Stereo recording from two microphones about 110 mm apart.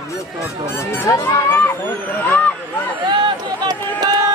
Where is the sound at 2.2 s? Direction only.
15° left (ahead or behind).